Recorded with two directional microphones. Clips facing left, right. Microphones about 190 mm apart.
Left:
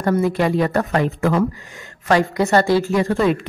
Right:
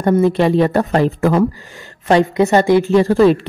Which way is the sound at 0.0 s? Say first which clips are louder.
Right 5 dB; 25° right (ahead or behind).